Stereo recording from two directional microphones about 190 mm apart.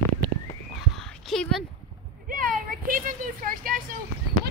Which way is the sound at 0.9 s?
Centre (ahead or behind).